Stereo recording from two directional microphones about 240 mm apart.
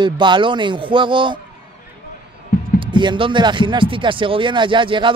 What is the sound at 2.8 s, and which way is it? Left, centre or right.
Speech, centre.